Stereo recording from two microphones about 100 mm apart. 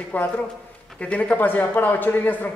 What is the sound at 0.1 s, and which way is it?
A man's voice, 15° left (ahead or behind).